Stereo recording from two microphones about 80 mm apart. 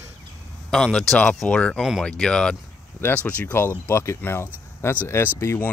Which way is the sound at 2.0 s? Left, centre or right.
Centre.